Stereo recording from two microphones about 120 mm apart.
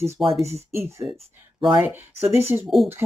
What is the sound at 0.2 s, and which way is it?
Speech, centre (ahead or behind).